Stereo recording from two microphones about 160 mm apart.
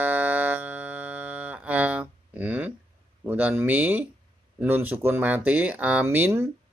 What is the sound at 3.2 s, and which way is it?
Speech, 10° right (ahead or behind).